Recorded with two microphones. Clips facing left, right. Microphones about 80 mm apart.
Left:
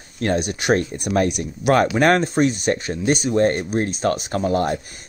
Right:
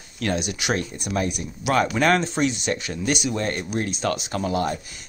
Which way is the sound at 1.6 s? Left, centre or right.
Left.